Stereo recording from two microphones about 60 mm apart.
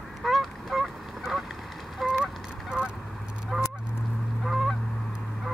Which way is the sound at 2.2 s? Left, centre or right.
Centre.